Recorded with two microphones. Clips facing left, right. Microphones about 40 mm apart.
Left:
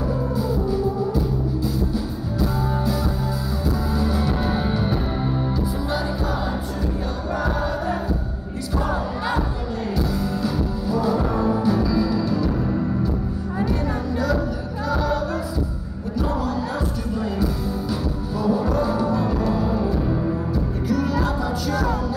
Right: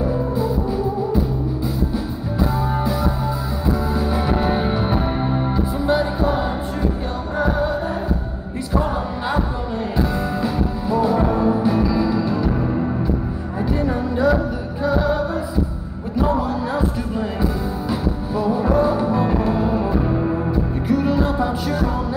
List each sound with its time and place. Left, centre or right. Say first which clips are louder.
0.4 s music: right 1 dB; right
2.7 s music: right 3 dB; right
7.3 s music: right 5 dB; right
9.9 s music: right 4 dB; right
13.7 s a sound: right 4 dB; right
14.9 s music: right 4 dB; right
16.2 s a sound: right 4 dB; right
18.3 s music: right 3 dB; right